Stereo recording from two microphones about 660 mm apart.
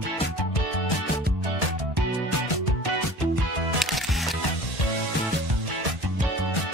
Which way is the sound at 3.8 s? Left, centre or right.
Centre.